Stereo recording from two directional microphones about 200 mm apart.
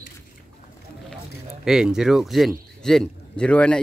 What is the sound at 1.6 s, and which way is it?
A man's voice, 5° right (ahead or behind).